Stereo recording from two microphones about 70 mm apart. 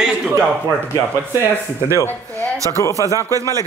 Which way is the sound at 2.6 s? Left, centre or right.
Left.